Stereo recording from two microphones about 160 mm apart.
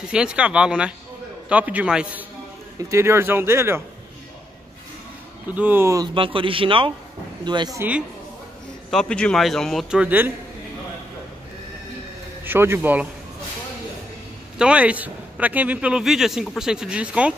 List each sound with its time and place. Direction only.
0.1 s a man's voice: 5° right (ahead or behind)
5.5 s a man's voice: 10° right (ahead or behind)
6.1 s a man's voice: 35° right (ahead or behind)
8.9 s a man's voice: 5° left (ahead or behind); by 10.3 s 10° right (ahead or behind)
12.4 s a man's voice: 15° right (ahead or behind)
14.6 s a man's voice: 5° right (ahead or behind)